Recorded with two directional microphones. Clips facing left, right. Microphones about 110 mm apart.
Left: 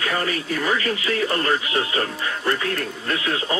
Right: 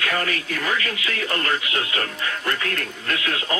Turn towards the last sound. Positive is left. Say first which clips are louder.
# left 2 dB
turn(degrees=30)  # may be behind; listen again after turning